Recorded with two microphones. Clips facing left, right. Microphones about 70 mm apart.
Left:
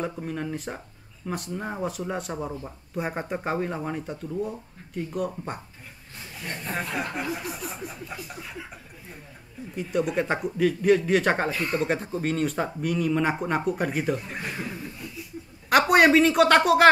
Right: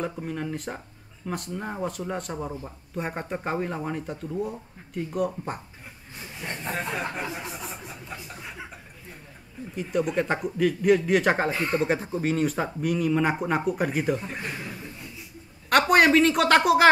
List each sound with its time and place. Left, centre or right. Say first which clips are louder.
0.0 s speech: even; centre
6.4 s a sound: right 1 dB; right
9.8 s speech: even; centre
11.5 s a sound: right 1 dB; right
11.8 s speech: right 1 dB; centre
15.9 s speech: left 1 dB; centre